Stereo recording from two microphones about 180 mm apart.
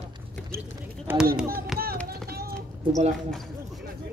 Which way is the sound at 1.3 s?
5° right (ahead or behind).